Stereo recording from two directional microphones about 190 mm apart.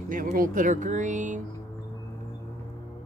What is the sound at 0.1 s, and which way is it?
Speech, 45° right (ahead or behind).